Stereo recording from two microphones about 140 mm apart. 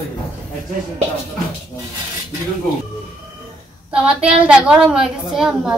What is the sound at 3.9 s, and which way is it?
A woman's voice, 10° right (ahead or behind).